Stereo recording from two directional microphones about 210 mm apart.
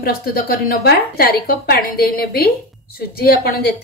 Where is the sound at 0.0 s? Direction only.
45° left (ahead or behind).